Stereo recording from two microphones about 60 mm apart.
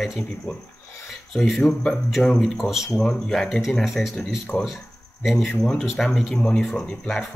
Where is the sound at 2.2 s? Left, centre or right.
Centre.